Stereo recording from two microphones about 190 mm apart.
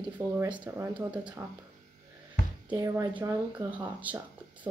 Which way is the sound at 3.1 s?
10° right (ahead or behind).